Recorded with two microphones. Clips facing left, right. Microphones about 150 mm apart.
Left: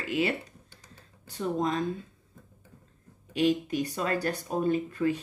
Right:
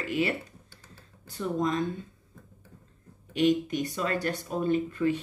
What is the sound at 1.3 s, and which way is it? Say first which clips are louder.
Speech: even; 30° left (ahead or behind).